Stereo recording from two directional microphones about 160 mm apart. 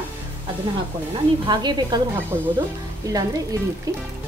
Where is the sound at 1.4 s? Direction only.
25° right (ahead or behind).